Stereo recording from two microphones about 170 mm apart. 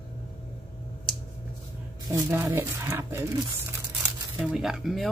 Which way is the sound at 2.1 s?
15° right (ahead or behind).